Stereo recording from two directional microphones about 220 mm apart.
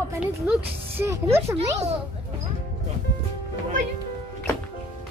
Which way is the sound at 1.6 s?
25° right (ahead or behind).